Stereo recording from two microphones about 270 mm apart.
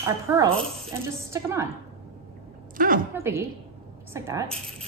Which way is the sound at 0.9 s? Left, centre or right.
Centre.